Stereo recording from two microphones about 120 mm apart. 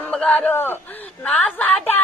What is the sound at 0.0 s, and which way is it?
Speech, 10° left (ahead or behind).